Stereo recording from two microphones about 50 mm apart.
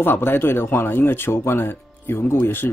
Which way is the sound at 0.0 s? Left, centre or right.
Left.